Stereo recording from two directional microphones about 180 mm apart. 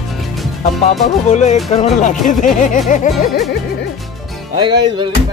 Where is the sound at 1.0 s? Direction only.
40° left (ahead or behind).